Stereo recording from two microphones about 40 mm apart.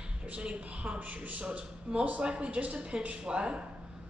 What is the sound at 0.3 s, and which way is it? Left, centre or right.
A man's voice, right.